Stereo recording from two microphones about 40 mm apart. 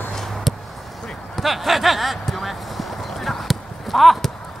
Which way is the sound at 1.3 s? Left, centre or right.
Centre.